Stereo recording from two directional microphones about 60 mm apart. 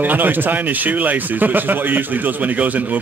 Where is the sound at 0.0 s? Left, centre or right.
Right.